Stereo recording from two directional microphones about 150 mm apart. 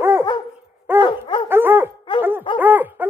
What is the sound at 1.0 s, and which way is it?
Dog, 35° left (ahead or behind).